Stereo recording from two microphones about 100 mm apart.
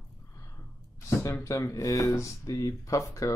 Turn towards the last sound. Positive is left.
turn(degrees=30)  # may be behind; listen again after turning